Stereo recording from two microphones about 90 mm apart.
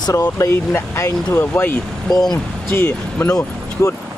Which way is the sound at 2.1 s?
50° left (ahead or behind).